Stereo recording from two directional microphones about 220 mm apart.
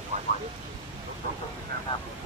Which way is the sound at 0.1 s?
30° right (ahead or behind).